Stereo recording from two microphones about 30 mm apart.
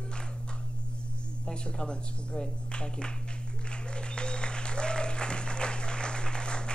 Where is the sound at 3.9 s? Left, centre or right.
Left.